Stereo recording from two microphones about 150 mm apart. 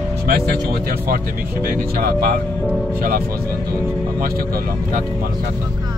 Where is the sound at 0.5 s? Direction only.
90° right.